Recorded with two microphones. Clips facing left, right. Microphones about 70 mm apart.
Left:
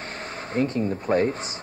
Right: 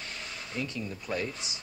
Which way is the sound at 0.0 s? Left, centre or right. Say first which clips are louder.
Left 7 dB; left.